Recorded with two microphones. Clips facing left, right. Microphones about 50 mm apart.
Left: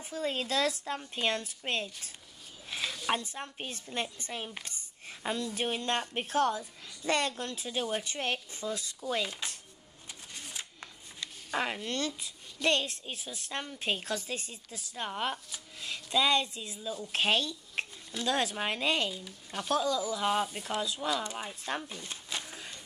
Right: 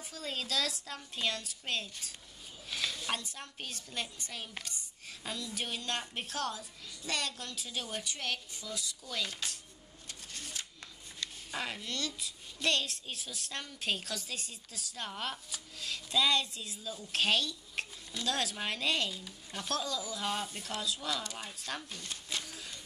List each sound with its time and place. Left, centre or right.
0.0 s a woman's voice: left
2.7 s a sound: centre
3.1 s a woman's voice: left
10.0 s shuffling cards: centre; by 12.1 s left
12.6 s a woman's voice: left
20.0 s speech: centre
20.6 s a woman's voice: left